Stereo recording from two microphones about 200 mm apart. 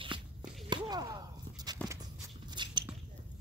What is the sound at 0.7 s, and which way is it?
Whip, 20° right (ahead or behind).